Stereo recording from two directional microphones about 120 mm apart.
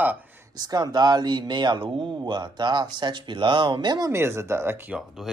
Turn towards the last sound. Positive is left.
turn(degrees=-5)  # may be behind; listen again after turning